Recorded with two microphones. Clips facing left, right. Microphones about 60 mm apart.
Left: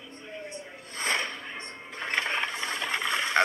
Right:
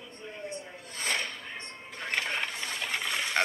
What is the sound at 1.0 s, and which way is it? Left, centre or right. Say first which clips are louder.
Music: left 3 dB; left.